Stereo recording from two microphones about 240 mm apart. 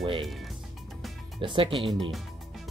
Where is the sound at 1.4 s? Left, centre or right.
Right.